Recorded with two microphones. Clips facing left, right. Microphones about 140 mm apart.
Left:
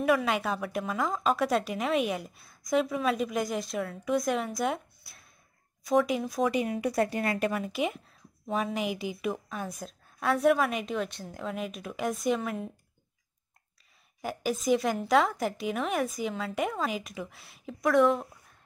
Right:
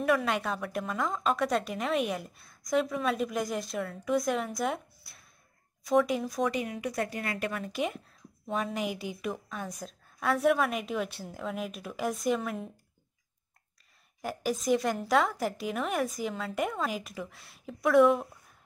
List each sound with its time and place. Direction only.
0.0 s a woman's voice: centre (ahead or behind)
6.7 s a woman's voice: 35° left (ahead or behind)
7.5 s a woman's voice: 5° left (ahead or behind)
14.2 s a woman's voice: centre (ahead or behind)